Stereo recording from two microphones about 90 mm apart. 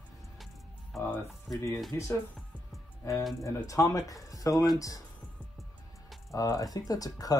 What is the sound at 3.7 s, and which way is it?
Speech, 40° left (ahead or behind).